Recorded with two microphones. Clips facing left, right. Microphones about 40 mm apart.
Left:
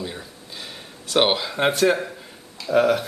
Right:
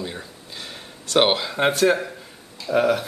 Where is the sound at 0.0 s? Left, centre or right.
Centre.